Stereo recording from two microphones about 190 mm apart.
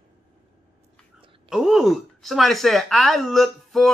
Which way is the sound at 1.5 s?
Centre (ahead or behind).